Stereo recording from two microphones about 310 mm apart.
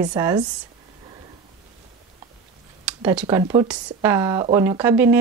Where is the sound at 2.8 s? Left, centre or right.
Centre.